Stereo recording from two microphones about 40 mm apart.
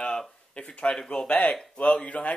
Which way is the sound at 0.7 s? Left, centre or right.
Left.